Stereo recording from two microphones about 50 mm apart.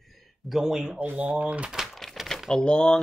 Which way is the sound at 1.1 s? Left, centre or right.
Right.